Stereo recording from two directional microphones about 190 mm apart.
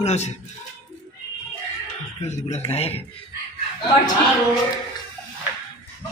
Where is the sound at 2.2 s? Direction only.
35° left (ahead or behind).